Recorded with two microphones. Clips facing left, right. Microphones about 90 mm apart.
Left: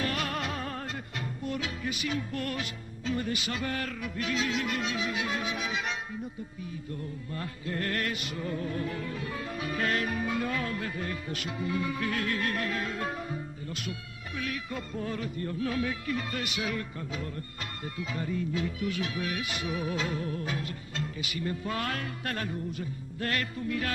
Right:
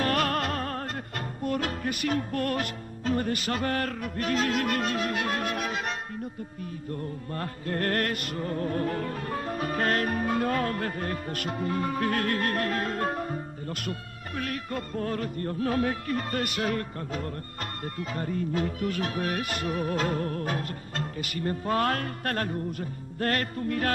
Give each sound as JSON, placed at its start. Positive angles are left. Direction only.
{"t": 0.0, "sound": "music", "side_deg": -50}
{"t": 7.3, "sound": "music", "side_deg": -50}